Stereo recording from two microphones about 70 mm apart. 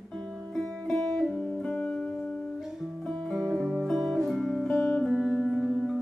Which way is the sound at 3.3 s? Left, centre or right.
Centre.